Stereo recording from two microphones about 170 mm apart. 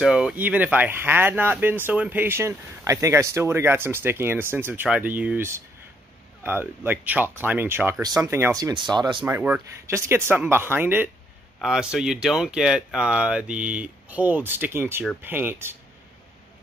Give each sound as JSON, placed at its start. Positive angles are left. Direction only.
{"t": 0.0, "sound": "speech", "side_deg": -5}
{"t": 9.2, "sound": "speech", "side_deg": -10}